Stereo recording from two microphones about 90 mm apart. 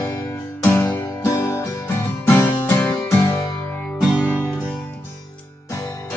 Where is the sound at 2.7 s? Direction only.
25° left (ahead or behind).